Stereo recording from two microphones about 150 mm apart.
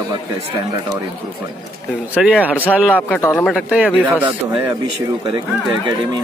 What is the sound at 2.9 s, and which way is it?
Speech, 10° left (ahead or behind).